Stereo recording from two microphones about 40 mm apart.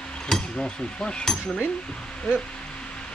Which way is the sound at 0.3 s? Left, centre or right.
Centre.